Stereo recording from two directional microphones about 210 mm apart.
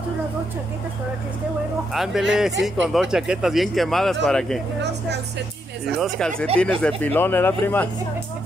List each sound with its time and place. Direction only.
2.0 s speech: centre (ahead or behind)
5.9 s speech: centre (ahead or behind)